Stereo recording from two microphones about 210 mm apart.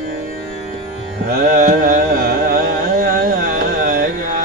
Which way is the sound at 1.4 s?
40° right (ahead or behind).